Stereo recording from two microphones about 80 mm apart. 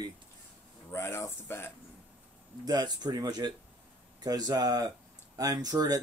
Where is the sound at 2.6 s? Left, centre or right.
Right.